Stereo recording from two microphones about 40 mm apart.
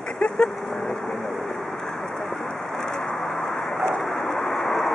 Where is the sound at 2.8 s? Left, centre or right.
Centre.